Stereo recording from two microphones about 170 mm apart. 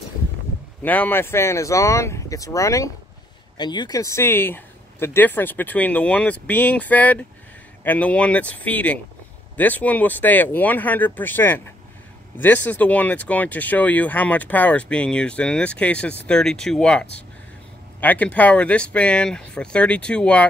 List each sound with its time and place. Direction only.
0.8 s speech: 10° left (ahead or behind)
12.6 s speech: 10° left (ahead or behind)